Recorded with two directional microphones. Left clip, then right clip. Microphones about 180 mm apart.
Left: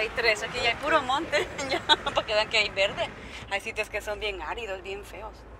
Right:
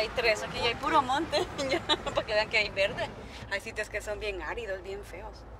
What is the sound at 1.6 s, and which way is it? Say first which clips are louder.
Speech: left 1 dB; 15° right (ahead or behind).